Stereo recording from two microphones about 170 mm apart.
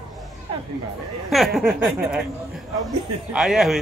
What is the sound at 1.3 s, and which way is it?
Speech, centre (ahead or behind).